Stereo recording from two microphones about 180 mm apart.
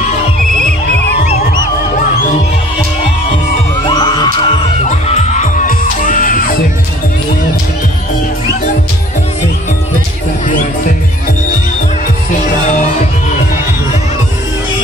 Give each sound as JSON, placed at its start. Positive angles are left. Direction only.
{"t": 3.8, "sound": "music", "side_deg": 25}